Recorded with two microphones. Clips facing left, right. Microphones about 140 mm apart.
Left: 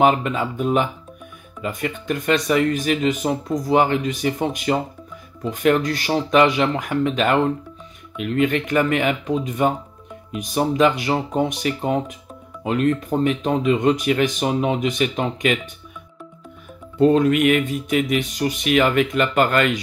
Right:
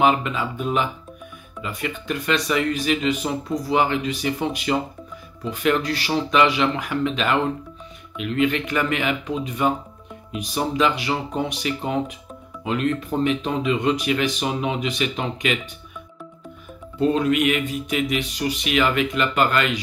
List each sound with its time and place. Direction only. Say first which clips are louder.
0.0 s speech: left 2 dB; 45° left (ahead or behind)
17.0 s speech: left 4 dB; 45° left (ahead or behind)